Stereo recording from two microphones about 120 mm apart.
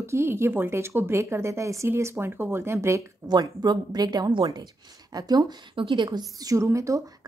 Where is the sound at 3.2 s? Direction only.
35° right (ahead or behind).